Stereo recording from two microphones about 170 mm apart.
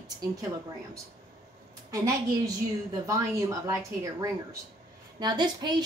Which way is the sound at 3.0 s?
20° right (ahead or behind).